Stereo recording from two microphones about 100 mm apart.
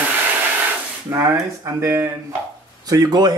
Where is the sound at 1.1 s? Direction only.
30° right (ahead or behind).